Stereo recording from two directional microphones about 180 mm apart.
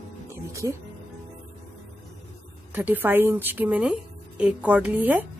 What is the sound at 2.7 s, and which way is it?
A woman's voice, 10° right (ahead or behind).